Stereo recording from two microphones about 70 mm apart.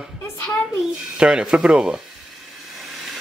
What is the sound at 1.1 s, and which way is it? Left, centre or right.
Speech, centre.